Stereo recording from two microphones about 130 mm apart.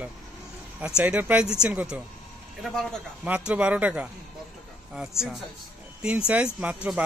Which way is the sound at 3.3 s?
10° right (ahead or behind).